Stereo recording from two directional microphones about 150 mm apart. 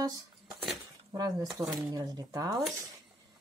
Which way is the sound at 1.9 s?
25° right (ahead or behind).